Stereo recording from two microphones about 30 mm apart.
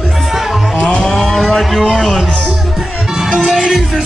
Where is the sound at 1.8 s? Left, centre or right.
Left.